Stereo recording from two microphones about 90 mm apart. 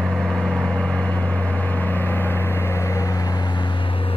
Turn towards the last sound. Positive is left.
turn(degrees=45)  # may be behind; listen again after turning